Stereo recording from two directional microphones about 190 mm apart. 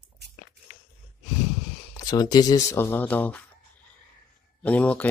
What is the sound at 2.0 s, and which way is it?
Speech, 20° left (ahead or behind).